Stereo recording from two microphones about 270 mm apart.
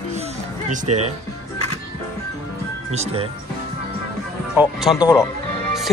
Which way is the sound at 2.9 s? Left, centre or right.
Right.